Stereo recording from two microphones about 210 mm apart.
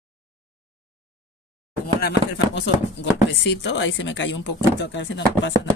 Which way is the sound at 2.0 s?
50° left (ahead or behind).